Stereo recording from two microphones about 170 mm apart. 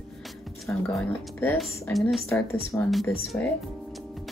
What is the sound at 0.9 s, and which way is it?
Speech, 10° left (ahead or behind).